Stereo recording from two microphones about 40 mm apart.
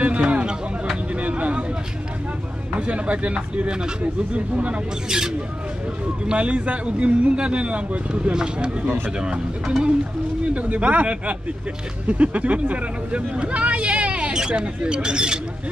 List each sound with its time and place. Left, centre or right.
0.0 s a sound: right
2.7 s speech: right
4.0 s speech: right
5.0 s speech: centre
6.3 s speech: right
10.4 s speech: right
14.3 s speech: right